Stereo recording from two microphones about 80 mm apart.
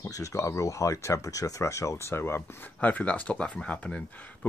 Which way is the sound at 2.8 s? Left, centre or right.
Centre.